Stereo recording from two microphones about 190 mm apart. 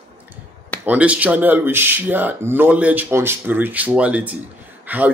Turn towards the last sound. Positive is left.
turn(degrees=-10)  # may be behind; listen again after turning